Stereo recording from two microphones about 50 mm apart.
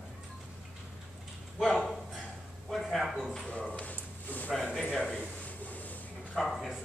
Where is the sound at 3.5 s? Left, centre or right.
Left.